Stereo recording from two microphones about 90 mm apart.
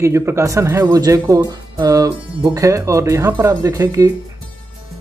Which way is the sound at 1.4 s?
45° right (ahead or behind).